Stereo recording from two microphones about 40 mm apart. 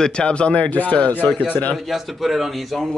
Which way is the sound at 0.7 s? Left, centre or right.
Left.